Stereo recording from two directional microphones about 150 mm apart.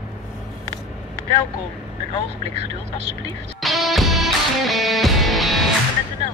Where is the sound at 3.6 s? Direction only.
Centre (ahead or behind).